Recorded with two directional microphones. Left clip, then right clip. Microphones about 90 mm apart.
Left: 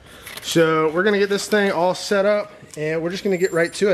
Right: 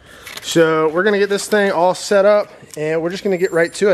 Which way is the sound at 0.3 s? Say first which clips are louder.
Right 3 dB; 20° right (ahead or behind).